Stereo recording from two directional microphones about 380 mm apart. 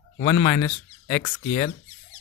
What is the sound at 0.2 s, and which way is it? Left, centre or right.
Speech, centre.